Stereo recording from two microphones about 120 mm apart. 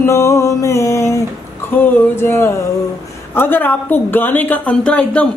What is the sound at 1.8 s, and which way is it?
Speech, 20° left (ahead or behind).